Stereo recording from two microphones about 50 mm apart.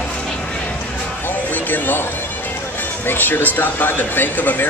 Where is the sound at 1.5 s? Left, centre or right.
Left.